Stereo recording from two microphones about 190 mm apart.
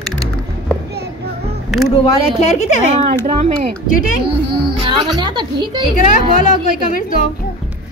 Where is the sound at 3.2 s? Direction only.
35° right (ahead or behind).